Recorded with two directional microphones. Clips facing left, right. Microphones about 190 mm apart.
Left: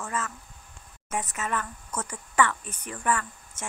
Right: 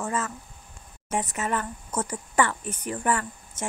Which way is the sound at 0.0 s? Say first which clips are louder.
Right 4 dB; 30° right (ahead or behind).